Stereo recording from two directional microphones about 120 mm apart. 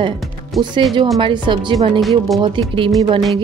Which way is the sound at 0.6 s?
40° right (ahead or behind).